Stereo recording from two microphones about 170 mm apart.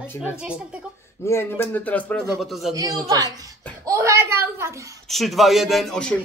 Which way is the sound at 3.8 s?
15° right (ahead or behind).